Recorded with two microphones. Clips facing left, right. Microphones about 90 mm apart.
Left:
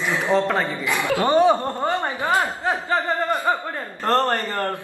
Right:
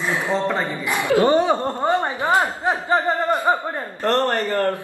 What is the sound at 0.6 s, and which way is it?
A man's voice, 20° right (ahead or behind).